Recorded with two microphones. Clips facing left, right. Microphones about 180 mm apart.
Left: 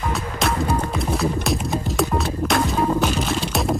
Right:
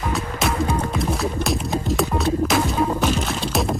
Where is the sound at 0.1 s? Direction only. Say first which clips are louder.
Right 1 dB; centre (ahead or behind).